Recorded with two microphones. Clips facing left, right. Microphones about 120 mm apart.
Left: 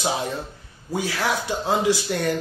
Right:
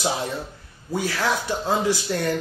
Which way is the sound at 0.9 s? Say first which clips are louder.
Even; 15° left (ahead or behind).